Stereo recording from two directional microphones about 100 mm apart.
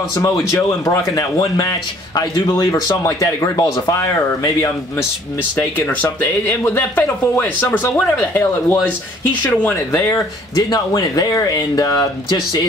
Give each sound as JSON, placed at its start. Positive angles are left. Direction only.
{"t": 0.1, "sound": "speech", "side_deg": 35}
{"t": 5.8, "sound": "speech", "side_deg": 15}
{"t": 6.0, "sound": "speech", "side_deg": 25}
{"t": 10.5, "sound": "speech", "side_deg": 45}